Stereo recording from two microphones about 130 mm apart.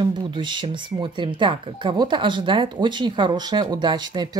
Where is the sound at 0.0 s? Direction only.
35° right (ahead or behind).